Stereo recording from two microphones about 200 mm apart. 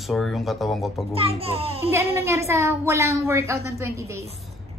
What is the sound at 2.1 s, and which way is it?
A woman's voice, 15° right (ahead or behind).